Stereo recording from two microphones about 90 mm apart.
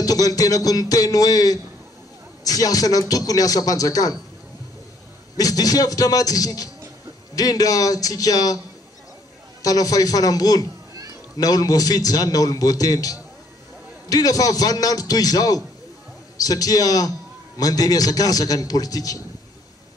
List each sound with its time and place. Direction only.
0.0 s a man's voice: 45° left (ahead or behind)
5.4 s a man's voice: 45° left (ahead or behind)
9.6 s a man's voice: 40° left (ahead or behind)